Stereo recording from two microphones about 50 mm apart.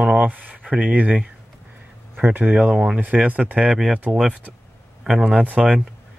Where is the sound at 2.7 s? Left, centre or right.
Centre.